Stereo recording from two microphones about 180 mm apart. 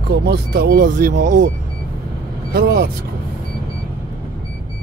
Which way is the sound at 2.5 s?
60° right (ahead or behind).